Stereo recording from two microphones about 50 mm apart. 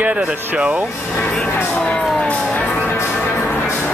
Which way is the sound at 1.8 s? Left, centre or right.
Centre.